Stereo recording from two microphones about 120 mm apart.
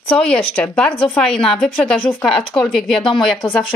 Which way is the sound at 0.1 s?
5° left (ahead or behind).